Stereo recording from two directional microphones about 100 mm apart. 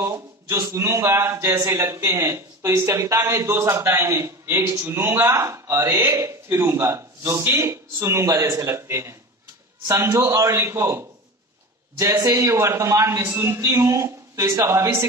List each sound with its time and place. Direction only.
0.0 s a man's voice: 30° right (ahead or behind)